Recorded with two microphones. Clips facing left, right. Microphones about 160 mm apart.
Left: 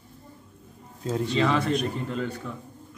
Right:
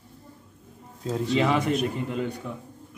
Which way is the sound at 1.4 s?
15° right (ahead or behind).